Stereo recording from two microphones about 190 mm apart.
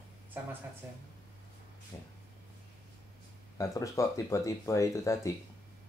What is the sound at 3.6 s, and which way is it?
Speech, 15° left (ahead or behind).